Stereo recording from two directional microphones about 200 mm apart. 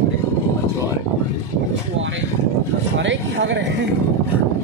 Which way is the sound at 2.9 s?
65° right (ahead or behind).